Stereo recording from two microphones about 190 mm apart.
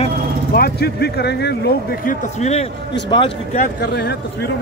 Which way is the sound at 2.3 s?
35° left (ahead or behind).